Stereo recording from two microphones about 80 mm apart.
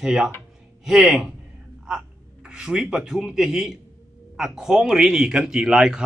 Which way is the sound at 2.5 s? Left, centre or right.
Centre.